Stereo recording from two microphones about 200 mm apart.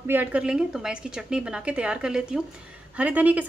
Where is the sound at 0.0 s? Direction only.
10° right (ahead or behind).